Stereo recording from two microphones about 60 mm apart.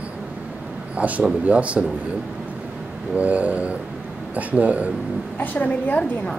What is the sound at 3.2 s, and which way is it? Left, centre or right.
Speech, right.